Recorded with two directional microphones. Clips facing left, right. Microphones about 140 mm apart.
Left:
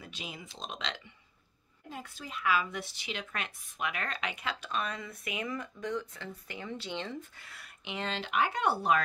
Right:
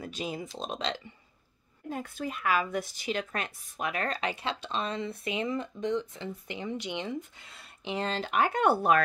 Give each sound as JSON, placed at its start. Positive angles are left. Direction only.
{"t": 0.0, "sound": "speech", "side_deg": -40}
{"t": 1.9, "sound": "speech", "side_deg": -50}